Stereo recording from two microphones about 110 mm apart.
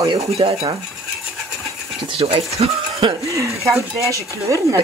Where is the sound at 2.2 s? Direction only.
65° right (ahead or behind).